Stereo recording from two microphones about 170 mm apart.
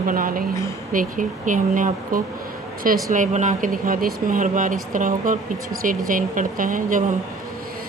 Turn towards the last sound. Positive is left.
turn(degrees=-50)  # may be behind; listen again after turning